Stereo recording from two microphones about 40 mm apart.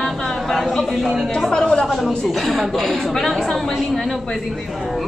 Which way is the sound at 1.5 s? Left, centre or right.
Centre.